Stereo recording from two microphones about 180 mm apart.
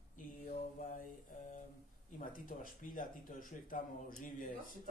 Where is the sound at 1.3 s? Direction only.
45° left (ahead or behind).